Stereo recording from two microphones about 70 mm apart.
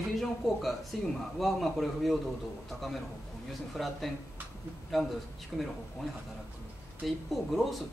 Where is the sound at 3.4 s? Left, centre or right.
Centre.